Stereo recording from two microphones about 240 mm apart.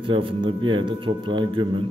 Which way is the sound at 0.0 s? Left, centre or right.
Right.